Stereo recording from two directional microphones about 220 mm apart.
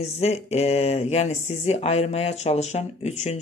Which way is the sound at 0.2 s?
30° left (ahead or behind).